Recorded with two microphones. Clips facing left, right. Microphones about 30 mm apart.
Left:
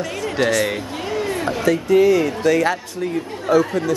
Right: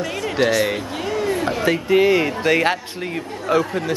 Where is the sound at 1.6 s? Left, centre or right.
Right.